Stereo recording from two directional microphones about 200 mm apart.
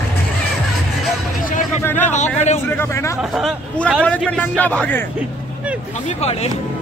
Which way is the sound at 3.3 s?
Centre (ahead or behind).